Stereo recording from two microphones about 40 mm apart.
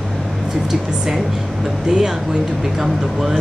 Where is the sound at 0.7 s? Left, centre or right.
Centre.